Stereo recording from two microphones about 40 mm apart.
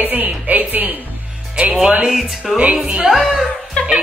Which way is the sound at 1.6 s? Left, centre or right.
Right.